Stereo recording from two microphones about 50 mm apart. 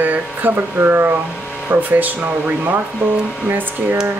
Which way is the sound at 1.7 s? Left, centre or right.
Right.